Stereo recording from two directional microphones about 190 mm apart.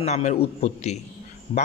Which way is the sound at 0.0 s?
35° left (ahead or behind).